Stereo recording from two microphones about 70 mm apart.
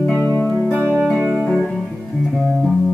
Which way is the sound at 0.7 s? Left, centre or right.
Right.